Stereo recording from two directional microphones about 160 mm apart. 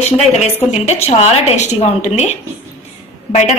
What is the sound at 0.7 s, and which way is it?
A woman's voice, 40° left (ahead or behind).